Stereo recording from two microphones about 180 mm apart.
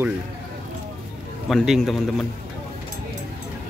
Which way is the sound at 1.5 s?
Centre (ahead or behind).